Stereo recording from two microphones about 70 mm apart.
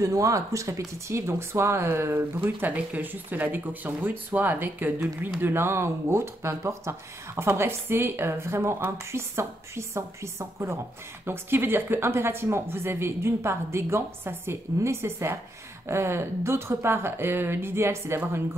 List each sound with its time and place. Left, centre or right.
0.0 s speech: right
11.2 s speech: right